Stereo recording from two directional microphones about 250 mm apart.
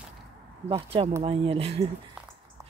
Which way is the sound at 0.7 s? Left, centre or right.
Right.